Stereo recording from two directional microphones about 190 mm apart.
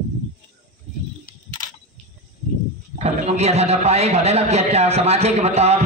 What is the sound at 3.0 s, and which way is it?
A man's voice, 35° right (ahead or behind).